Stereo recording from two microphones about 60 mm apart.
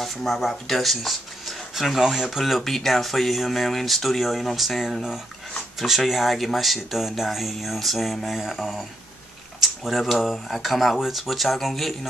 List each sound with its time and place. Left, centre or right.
0.0 s speech: centre